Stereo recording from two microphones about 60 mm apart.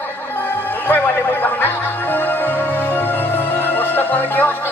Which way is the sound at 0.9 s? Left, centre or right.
Left.